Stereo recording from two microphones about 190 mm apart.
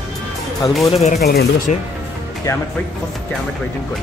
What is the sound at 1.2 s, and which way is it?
Speech, 55° left (ahead or behind).